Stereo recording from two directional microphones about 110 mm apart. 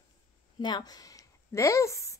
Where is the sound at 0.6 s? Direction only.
40° left (ahead or behind).